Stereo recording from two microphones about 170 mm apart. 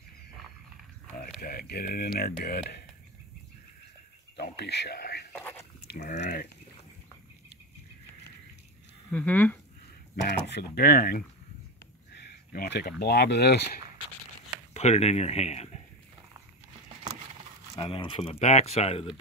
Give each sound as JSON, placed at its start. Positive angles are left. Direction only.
{"t": 1.4, "sound": "speech", "side_deg": 60}
{"t": 4.4, "sound": "a sound", "side_deg": 75}
{"t": 5.3, "sound": "a sound", "side_deg": 10}
{"t": 5.9, "sound": "a sound", "side_deg": 70}
{"t": 6.2, "sound": "speech", "side_deg": 90}
{"t": 9.1, "sound": "speech", "side_deg": 10}
{"t": 10.2, "sound": "speech", "side_deg": 80}
{"t": 14.7, "sound": "speech", "side_deg": 40}
{"t": 17.7, "sound": "speech", "side_deg": 30}